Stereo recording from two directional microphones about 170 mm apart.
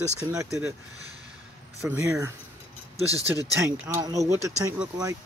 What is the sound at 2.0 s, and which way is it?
Speech, 15° right (ahead or behind).